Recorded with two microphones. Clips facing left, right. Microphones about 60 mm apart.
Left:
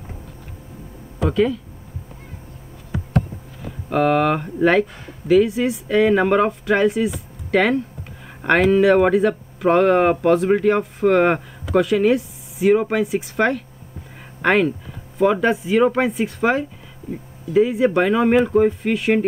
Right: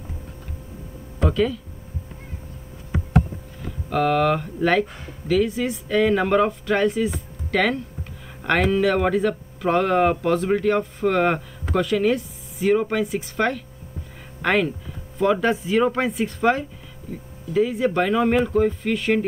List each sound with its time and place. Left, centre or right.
1.2 s speech: centre
3.9 s speech: centre